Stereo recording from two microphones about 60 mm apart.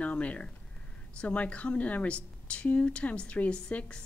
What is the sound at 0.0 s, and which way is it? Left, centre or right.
A woman's voice, left.